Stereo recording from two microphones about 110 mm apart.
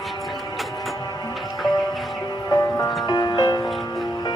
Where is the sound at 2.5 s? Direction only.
30° left (ahead or behind).